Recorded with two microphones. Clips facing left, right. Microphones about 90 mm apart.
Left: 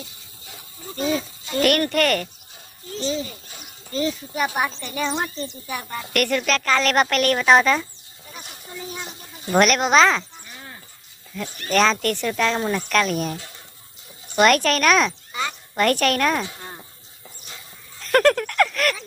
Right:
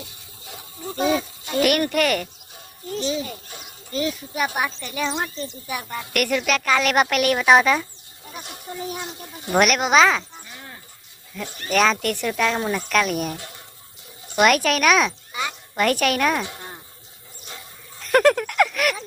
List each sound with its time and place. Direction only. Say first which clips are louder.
1.5 s a woman's voice: even; 10° right (ahead or behind)
8.4 s speech: right 4 dB; 60° right (ahead or behind)
9.5 s a child's voice: left 1 dB; 5° right (ahead or behind)
11.4 s speech: right 1 dB; 20° right (ahead or behind)
11.7 s a woman's voice: left 1 dB; 5° right (ahead or behind)
17.9 s a sound: even; 10° right (ahead or behind)